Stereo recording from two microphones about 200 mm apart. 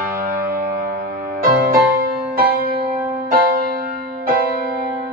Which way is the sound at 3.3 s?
45° right (ahead or behind).